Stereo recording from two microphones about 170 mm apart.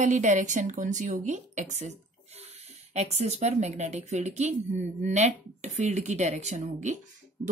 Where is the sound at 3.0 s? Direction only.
40° right (ahead or behind).